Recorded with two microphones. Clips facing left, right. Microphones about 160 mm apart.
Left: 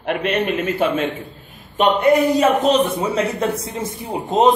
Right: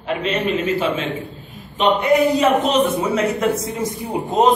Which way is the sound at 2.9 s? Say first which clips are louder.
Right 1 dB; 30° left (ahead or behind).